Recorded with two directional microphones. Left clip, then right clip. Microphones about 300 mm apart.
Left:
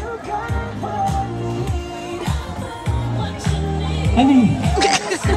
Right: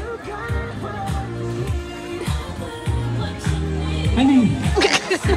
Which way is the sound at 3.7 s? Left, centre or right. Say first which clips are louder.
Left 4 dB; centre.